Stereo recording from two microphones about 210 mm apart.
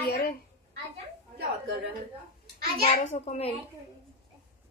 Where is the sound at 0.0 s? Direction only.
45° left (ahead or behind).